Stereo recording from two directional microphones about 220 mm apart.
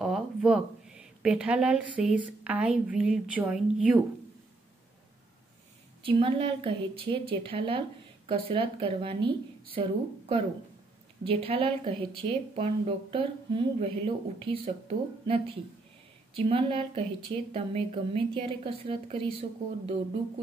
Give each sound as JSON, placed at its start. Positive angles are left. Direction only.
{"t": 0.0, "sound": "speech", "side_deg": -5}
{"t": 6.0, "sound": "speech", "side_deg": -25}